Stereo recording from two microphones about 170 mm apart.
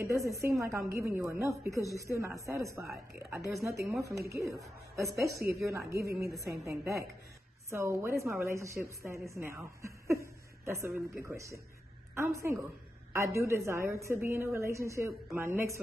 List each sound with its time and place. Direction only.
0.0 s a woman's voice: 20° right (ahead or behind)
1.9 s a woman's voice: 20° left (ahead or behind)
2.1 s a woman's voice: 15° right (ahead or behind)